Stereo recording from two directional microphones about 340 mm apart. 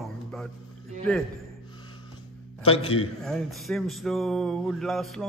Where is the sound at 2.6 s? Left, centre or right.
Centre.